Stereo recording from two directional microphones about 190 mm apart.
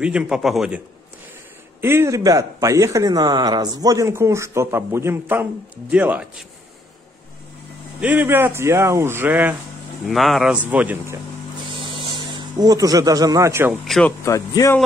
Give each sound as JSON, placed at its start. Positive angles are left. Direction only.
{"t": 0.0, "sound": "a man's voice", "side_deg": -5}
{"t": 8.0, "sound": "a man's voice", "side_deg": -10}
{"t": 11.6, "sound": "a sound", "side_deg": -30}
{"t": 13.8, "sound": "speech", "side_deg": 5}
{"t": 14.2, "sound": "speech", "side_deg": 15}